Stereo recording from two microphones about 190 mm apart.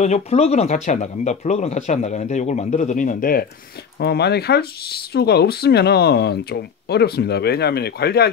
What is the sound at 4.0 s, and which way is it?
Speech, 60° left (ahead or behind).